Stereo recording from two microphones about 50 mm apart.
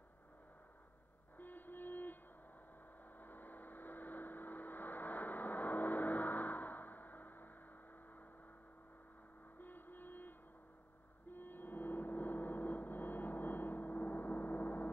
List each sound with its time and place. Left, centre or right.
1.4 s a sound: left
3.2 s vehicle: left
9.6 s music: left
11.2 s gong: left